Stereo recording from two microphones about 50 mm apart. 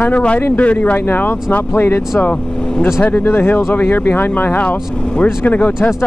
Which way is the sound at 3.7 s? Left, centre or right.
Left.